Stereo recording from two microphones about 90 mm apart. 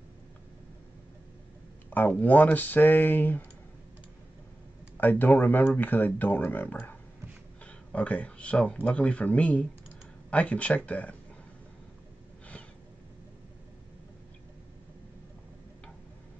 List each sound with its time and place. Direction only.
1.9 s speech: 15° left (ahead or behind)
4.9 s speech: 20° left (ahead or behind)